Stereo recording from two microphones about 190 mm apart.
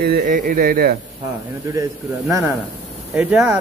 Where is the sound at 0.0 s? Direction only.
45° right (ahead or behind).